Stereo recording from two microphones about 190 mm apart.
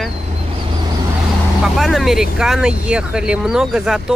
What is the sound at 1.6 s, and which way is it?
Speech, centre (ahead or behind).